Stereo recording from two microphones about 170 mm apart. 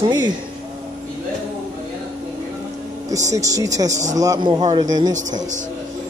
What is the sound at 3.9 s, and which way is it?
Speech, 45° right (ahead or behind).